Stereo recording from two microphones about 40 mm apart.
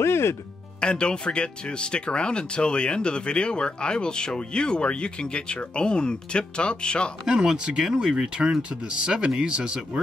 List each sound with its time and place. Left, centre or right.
0.0 s music: left
0.7 s speech: left
7.2 s speech: right